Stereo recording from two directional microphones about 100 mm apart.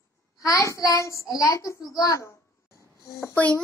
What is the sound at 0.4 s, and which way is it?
A child's voice, 35° left (ahead or behind).